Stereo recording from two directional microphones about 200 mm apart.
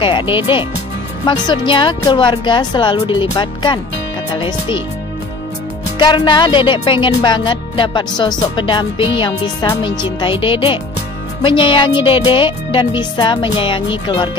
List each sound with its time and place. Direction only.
0.0 s speech: 25° left (ahead or behind)
5.9 s speech: 20° left (ahead or behind)